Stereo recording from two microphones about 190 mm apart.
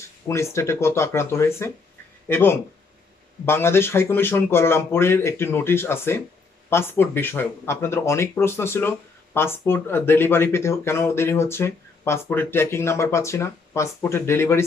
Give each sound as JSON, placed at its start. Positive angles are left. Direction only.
{"t": 0.3, "sound": "speech", "side_deg": 15}